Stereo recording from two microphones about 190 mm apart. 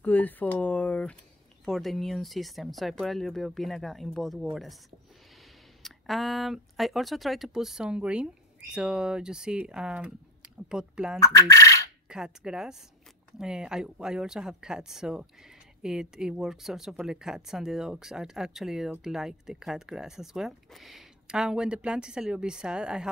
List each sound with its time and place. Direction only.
0.0 s speech: 10° left (ahead or behind)
5.8 s speech: centre (ahead or behind)
11.1 s speech: 15° left (ahead or behind)
12.1 s speech: 5° right (ahead or behind)